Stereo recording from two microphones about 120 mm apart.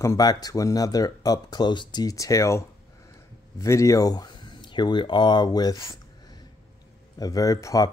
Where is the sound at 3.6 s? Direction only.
25° left (ahead or behind).